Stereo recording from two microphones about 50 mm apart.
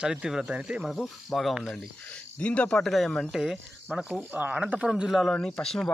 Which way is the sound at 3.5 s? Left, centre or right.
Right.